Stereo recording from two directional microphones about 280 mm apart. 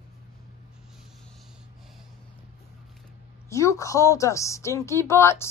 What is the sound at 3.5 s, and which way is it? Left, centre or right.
A woman's voice, centre.